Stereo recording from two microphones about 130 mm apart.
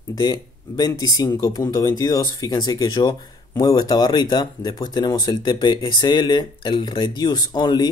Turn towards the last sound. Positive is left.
turn(degrees=35)  # may be behind; listen again after turning